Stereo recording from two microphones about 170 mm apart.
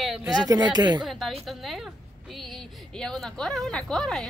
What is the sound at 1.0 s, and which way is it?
A woman's voice, centre (ahead or behind).